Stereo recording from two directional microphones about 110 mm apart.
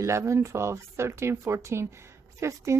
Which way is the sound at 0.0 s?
25° right (ahead or behind).